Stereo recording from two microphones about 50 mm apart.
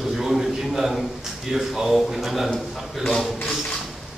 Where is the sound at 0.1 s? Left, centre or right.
Centre.